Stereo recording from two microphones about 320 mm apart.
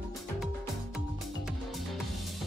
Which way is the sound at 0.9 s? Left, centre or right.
Centre.